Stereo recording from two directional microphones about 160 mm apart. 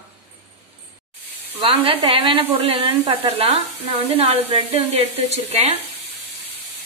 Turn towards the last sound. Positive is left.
turn(degrees=-40)  # may be behind; listen again after turning